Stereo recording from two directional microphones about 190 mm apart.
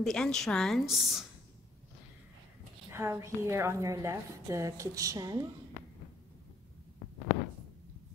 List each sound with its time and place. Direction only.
0.0 s a woman's voice: 5° left (ahead or behind)
2.9 s a woman's voice: 15° right (ahead or behind)